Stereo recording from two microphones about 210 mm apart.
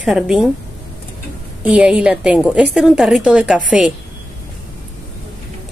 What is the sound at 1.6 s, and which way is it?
A woman's voice, 5° right (ahead or behind).